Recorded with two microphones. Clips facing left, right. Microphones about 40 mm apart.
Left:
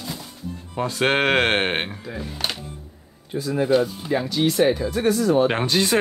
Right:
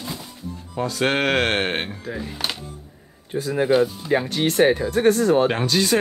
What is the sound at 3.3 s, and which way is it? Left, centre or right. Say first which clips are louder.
Speech: right 1 dB; right.